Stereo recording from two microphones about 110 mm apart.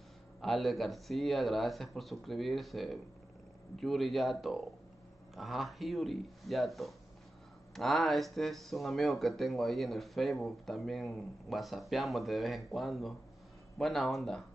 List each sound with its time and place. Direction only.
0.4 s speech: centre (ahead or behind)